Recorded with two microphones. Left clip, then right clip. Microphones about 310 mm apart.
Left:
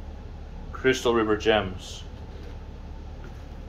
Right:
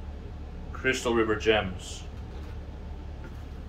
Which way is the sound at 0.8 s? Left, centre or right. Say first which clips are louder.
Left 3 dB; left.